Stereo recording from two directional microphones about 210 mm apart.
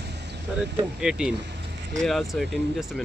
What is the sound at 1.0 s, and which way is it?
Speech, 5° right (ahead or behind).